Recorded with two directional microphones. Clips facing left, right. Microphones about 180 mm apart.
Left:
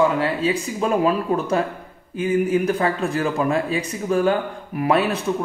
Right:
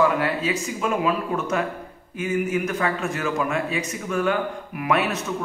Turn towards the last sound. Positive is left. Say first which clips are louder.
# left 4 dB
turn(degrees=30)  # may be behind; listen again after turning